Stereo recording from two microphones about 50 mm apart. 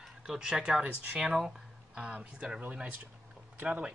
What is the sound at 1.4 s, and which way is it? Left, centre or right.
Music, centre.